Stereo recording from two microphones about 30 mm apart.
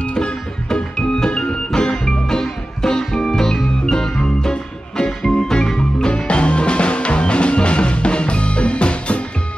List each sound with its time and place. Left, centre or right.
0.1 s music: left
6.2 s music: left